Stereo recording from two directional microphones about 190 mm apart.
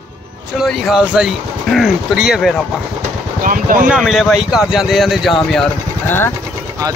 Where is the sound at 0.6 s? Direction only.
Centre (ahead or behind).